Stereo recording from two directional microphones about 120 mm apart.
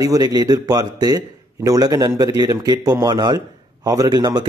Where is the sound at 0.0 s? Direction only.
30° right (ahead or behind).